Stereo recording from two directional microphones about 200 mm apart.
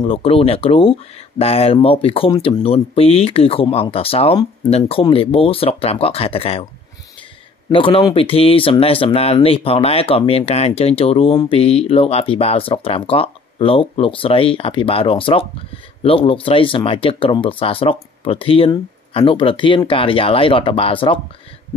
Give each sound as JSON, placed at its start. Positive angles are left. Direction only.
{"t": 0.0, "sound": "speech", "side_deg": 25}
{"t": 7.7, "sound": "speech", "side_deg": 25}